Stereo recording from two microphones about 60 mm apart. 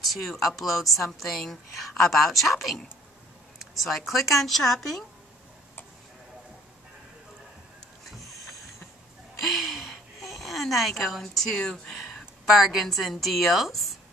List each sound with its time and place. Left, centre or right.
0.1 s a woman's voice: centre
3.8 s a woman's voice: centre
9.4 s a sound: centre
10.3 s speech: centre
12.0 s speech: centre